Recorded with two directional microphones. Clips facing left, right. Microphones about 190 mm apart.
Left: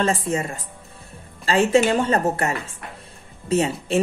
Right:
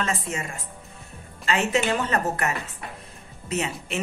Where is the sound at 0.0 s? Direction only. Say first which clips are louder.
Left 7 dB; 35° left (ahead or behind).